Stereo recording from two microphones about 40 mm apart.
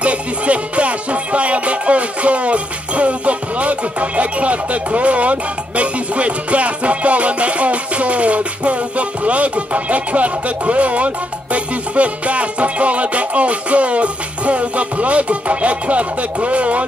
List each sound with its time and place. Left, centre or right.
0.0 s music: right